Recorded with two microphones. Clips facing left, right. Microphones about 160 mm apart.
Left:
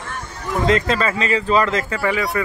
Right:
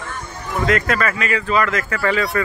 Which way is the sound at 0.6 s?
25° left (ahead or behind).